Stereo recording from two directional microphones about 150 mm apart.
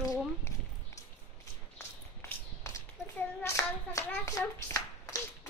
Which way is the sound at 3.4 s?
20° left (ahead or behind).